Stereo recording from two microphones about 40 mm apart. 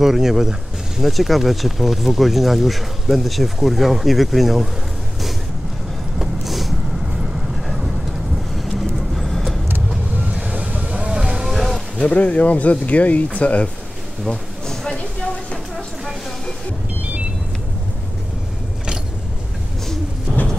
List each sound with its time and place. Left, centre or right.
0.0 s speech: centre
6.1 s a sound: centre
7.6 s vehicle: centre
10.3 s vehicle: right
10.9 s vehicle: centre
12.1 s speech: left
14.3 s a sound: centre